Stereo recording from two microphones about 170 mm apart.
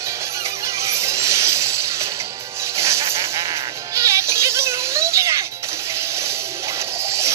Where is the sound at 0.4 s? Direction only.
15° right (ahead or behind).